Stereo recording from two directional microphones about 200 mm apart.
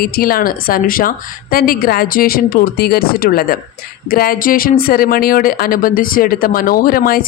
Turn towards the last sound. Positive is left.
turn(degrees=45)  # may be behind; listen again after turning